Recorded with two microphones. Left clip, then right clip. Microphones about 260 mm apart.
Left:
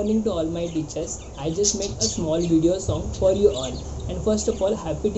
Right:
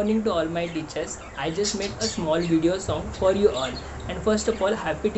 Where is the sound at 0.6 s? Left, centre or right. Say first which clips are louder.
Left 1 dB; centre.